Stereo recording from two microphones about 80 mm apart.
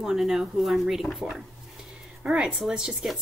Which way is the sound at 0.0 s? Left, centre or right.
Centre.